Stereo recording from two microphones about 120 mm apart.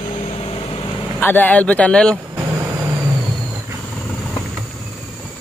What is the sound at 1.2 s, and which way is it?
Speech, 15° left (ahead or behind).